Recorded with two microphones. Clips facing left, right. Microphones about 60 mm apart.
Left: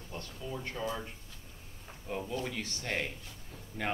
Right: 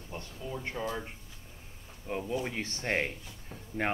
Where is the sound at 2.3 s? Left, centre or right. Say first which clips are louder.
Right 3 dB; right.